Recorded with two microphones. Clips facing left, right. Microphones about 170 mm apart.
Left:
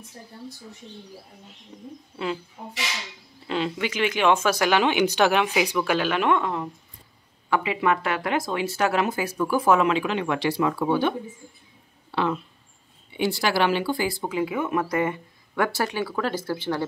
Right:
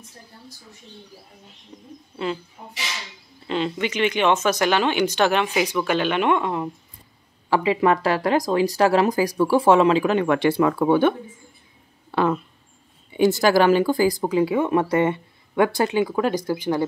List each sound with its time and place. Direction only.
3.4 s speech: 5° left (ahead or behind)
7.4 s speech: 35° right (ahead or behind)
10.0 s speech: 50° right (ahead or behind); by 16.8 s 15° right (ahead or behind)